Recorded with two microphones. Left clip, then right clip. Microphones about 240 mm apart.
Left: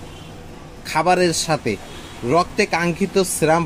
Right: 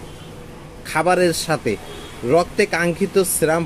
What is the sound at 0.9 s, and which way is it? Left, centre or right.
Speech, left.